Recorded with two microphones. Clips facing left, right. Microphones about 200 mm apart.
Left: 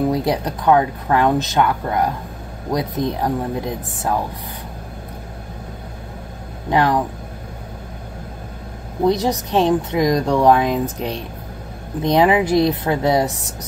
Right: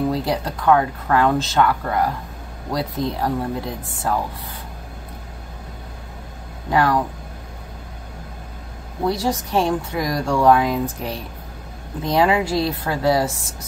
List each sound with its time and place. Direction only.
0.1 s speech: 20° left (ahead or behind)
6.7 s speech: 20° left (ahead or behind)
9.0 s speech: 20° left (ahead or behind)